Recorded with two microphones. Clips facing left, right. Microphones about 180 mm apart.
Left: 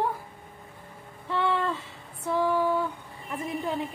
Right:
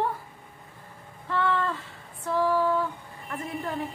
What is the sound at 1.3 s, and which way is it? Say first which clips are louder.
Music: even; 20° left (ahead or behind).